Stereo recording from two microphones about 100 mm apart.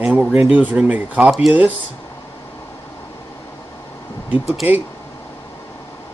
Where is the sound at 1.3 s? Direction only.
5° right (ahead or behind).